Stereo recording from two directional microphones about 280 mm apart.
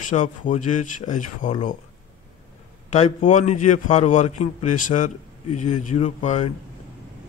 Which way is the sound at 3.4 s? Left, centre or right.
Left.